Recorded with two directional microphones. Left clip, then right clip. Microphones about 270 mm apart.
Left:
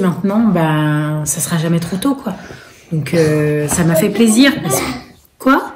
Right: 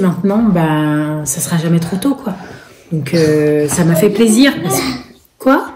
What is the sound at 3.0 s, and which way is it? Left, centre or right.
A woman's voice, centre.